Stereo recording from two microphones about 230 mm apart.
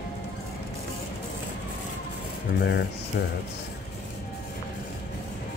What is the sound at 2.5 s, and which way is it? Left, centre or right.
Speech, left.